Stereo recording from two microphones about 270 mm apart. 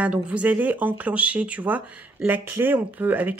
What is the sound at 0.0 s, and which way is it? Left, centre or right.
Speech, centre.